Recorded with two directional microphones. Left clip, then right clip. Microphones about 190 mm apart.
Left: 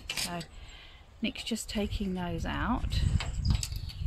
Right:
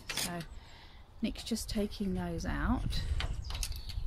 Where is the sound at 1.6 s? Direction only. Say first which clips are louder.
Left 2 dB; 5° left (ahead or behind).